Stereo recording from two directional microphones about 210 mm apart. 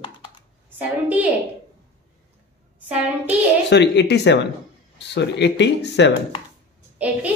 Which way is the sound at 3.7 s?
55° left (ahead or behind).